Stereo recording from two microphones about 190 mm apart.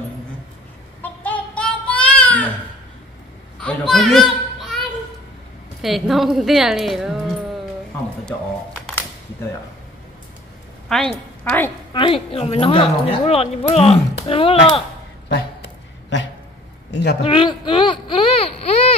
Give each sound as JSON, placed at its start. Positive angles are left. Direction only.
{"t": 1.0, "sound": "child singing", "side_deg": 10}
{"t": 3.6, "sound": "children playing", "side_deg": 0}
{"t": 5.8, "sound": "speech", "side_deg": 0}
{"t": 10.9, "sound": "a woman's voice", "side_deg": 0}
{"t": 11.9, "sound": "a woman's voice", "side_deg": 25}
{"t": 15.2, "sound": "a sound", "side_deg": 70}
{"t": 16.9, "sound": "speech", "side_deg": 60}
{"t": 17.2, "sound": "speech", "side_deg": 30}